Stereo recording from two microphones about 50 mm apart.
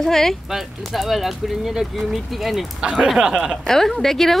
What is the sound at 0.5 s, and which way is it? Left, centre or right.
Speech, centre.